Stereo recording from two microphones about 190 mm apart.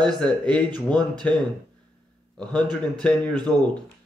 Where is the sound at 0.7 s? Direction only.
20° right (ahead or behind).